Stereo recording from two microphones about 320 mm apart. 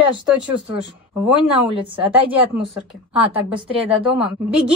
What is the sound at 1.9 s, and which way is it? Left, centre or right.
A woman's voice, centre.